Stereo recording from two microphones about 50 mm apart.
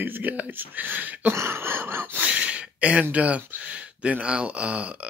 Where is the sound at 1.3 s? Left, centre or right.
Right.